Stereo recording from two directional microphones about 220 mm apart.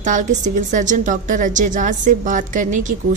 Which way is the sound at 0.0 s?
35° right (ahead or behind).